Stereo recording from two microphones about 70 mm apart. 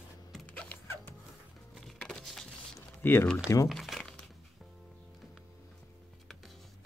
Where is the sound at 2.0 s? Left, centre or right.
Centre.